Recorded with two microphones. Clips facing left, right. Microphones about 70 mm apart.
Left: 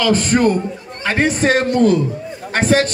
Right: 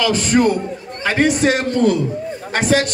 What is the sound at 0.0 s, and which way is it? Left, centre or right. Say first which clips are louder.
A man's voice: left 1 dB; left.